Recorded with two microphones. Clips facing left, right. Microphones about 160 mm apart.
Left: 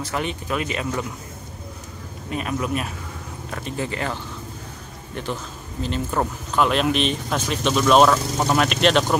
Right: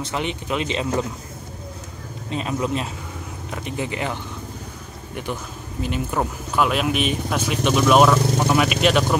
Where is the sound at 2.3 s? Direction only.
25° right (ahead or behind).